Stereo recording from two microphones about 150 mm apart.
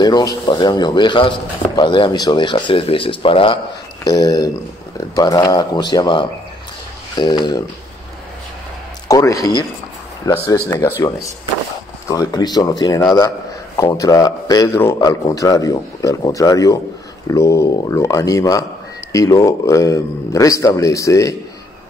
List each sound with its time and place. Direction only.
0.0 s speech: 25° left (ahead or behind)
4.0 s a man's voice: 25° left (ahead or behind)
9.0 s a man's voice: 20° left (ahead or behind)
12.1 s a man's voice: 25° left (ahead or behind)